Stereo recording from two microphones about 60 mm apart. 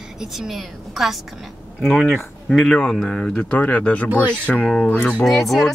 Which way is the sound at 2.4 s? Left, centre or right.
Centre.